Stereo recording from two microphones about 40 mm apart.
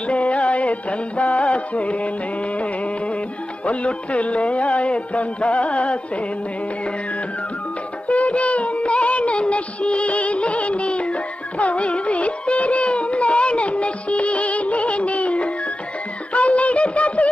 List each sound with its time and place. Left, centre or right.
0.1 s music: left
3.6 s music: left
8.1 s music: left
16.3 s a sound: left